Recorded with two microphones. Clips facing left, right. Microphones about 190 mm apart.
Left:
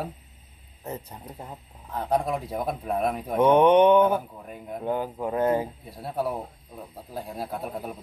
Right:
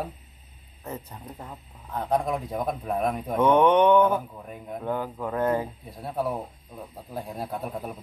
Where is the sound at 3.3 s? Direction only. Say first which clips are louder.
Left 2 dB; 20° left (ahead or behind).